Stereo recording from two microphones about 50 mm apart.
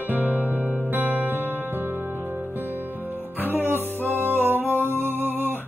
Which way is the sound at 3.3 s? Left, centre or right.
Right.